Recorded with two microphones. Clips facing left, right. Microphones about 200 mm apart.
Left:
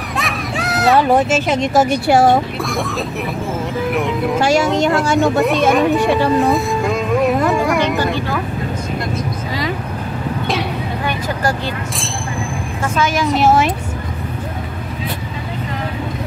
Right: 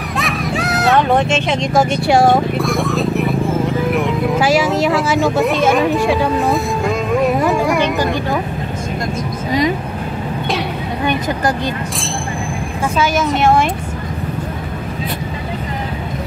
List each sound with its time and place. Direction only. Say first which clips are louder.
0.2 s speech: right 4 dB; centre (ahead or behind)
7.4 s music: right 1 dB; centre (ahead or behind)
8.0 s vehicle: right 1 dB; 15° right (ahead or behind)
13.0 s speech: even; centre (ahead or behind)